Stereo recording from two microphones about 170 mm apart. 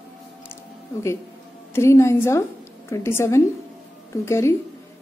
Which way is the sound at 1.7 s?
15° left (ahead or behind).